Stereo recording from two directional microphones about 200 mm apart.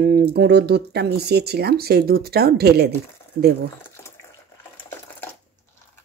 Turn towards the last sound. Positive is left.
turn(degrees=10)  # may be behind; listen again after turning